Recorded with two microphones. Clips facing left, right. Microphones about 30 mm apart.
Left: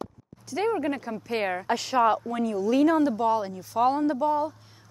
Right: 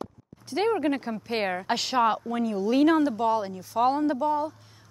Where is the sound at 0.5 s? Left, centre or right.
Right.